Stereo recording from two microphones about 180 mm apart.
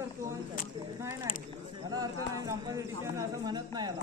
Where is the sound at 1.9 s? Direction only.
20° right (ahead or behind).